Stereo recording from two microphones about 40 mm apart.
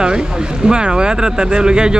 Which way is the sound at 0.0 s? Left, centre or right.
Centre.